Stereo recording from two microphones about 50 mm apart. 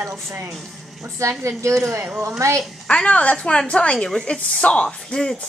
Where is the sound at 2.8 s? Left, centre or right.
Left.